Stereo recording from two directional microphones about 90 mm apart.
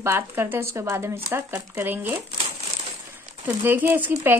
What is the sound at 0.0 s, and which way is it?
Speech, 25° right (ahead or behind).